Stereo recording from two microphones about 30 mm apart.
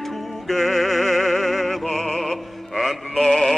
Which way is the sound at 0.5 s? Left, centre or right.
Centre.